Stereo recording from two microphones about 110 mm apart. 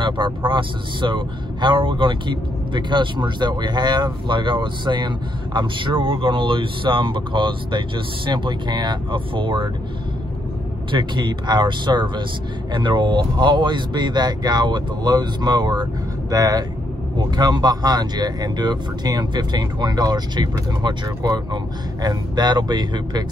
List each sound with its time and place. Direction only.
0.5 s speech: 45° right (ahead or behind)
10.9 s speech: 45° right (ahead or behind)